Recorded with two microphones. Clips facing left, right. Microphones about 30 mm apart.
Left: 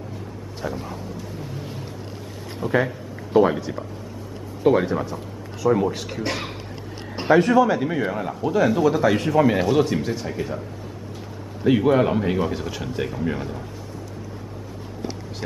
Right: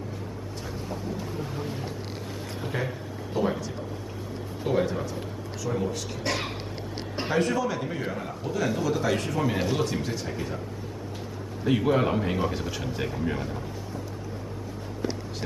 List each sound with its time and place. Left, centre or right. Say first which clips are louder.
0.7 s speech: left 7 dB; centre
2.6 s speech: left 12 dB; right
3.3 s speech: left 10 dB; left
4.6 s speech: left 7 dB; left
6.2 s speech: even; centre
11.6 s speech: left 6 dB; centre